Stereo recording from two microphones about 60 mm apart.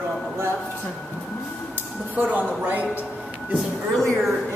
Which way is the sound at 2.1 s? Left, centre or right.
Right.